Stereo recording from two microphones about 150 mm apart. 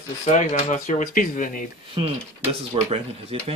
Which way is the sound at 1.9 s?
40° right (ahead or behind).